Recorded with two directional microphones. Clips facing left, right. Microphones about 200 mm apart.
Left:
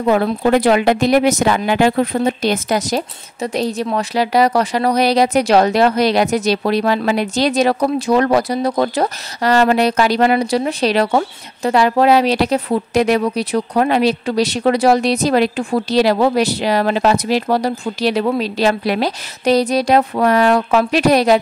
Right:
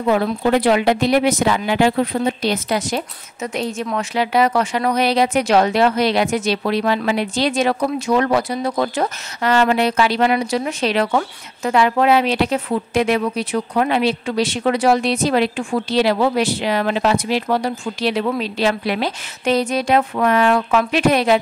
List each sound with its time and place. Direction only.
0.0 s speech: 45° left (ahead or behind)